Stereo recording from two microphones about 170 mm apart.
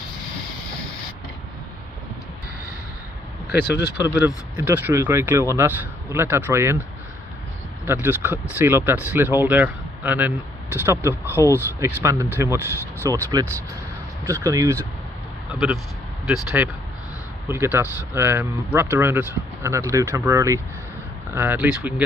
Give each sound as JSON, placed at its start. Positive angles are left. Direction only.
{"t": 4.0, "sound": "speech", "side_deg": -10}
{"t": 7.8, "sound": "speech", "side_deg": -15}
{"t": 11.3, "sound": "speech", "side_deg": 15}
{"t": 11.8, "sound": "speech", "side_deg": -15}
{"t": 15.5, "sound": "speech", "side_deg": 0}